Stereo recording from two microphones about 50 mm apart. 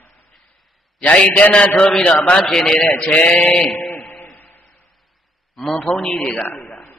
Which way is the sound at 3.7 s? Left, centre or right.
Left.